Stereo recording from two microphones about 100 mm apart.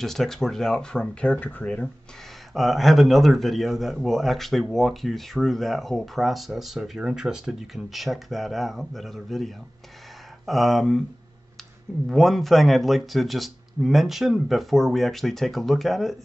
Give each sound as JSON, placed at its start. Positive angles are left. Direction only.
{"t": 0.0, "sound": "speech", "side_deg": 5}
{"t": 2.5, "sound": "speech", "side_deg": 0}
{"t": 12.1, "sound": "speech", "side_deg": 0}